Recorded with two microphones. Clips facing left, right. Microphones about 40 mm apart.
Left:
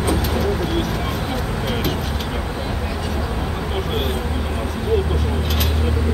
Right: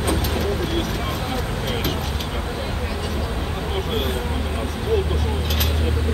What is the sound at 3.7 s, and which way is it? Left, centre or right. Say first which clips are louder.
Vehicle: even; centre.